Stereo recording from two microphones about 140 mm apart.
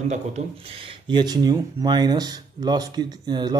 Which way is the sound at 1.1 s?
30° right (ahead or behind).